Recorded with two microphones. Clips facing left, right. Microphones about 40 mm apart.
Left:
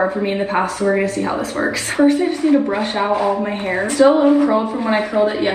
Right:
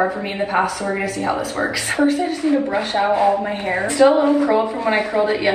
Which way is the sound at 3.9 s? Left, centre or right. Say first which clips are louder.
Left 2 dB; right.